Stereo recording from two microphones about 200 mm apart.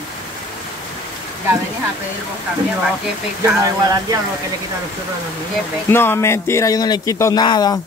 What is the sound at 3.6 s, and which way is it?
Speech, 15° right (ahead or behind).